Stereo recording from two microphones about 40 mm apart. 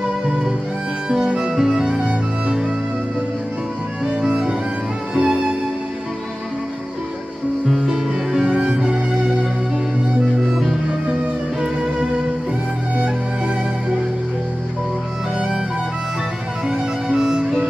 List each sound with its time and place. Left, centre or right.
0.3 s music: centre
4.0 s music: right
7.6 s music: centre
8.5 s music: right
10.5 s music: centre
12.0 s music: right
16.6 s music: centre